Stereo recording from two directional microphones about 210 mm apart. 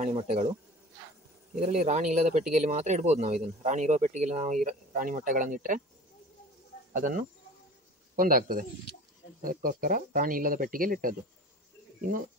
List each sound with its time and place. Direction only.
0.0 s speech: 30° right (ahead or behind)
1.5 s speech: 30° right (ahead or behind)
6.9 s speech: 40° right (ahead or behind)